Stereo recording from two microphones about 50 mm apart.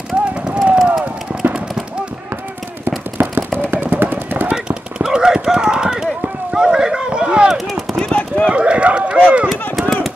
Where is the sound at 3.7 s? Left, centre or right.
Right.